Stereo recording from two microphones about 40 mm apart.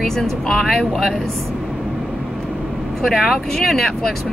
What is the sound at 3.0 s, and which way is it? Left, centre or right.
Speech, centre.